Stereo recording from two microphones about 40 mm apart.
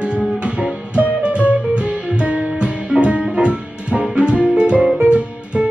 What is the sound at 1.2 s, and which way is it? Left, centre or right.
Music, right.